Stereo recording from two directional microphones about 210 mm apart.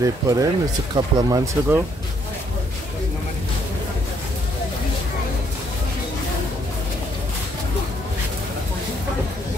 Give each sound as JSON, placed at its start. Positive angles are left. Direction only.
{"t": 0.0, "sound": "speech", "side_deg": -15}